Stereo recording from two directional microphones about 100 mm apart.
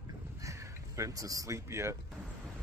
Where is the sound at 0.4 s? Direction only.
30° right (ahead or behind).